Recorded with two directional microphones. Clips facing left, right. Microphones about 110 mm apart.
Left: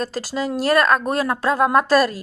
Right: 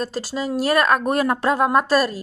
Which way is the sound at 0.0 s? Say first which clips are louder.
Left 1 dB; centre (ahead or behind).